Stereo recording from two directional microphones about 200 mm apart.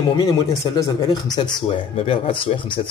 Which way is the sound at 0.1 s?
20° left (ahead or behind).